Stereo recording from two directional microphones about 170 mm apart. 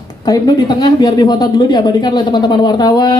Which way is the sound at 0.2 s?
20° left (ahead or behind).